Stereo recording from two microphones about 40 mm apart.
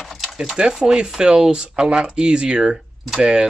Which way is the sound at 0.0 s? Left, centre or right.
Centre.